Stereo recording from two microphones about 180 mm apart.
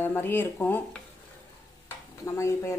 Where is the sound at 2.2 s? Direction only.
15° left (ahead or behind).